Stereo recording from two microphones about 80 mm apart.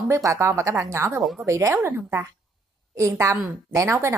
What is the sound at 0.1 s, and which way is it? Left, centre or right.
Speech, right.